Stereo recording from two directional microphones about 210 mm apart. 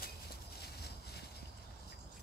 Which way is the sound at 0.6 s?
50° left (ahead or behind).